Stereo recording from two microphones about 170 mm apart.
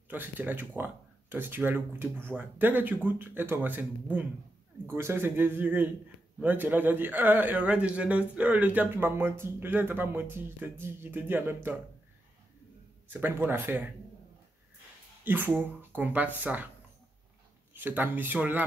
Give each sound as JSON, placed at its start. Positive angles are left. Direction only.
{"t": 0.1, "sound": "a man's voice", "side_deg": -10}
{"t": 13.1, "sound": "a man's voice", "side_deg": -10}
{"t": 15.2, "sound": "a man's voice", "side_deg": -10}
{"t": 17.7, "sound": "a man's voice", "side_deg": -10}